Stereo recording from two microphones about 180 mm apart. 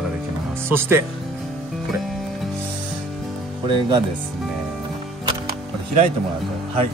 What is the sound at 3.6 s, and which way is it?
Speech, 25° right (ahead or behind).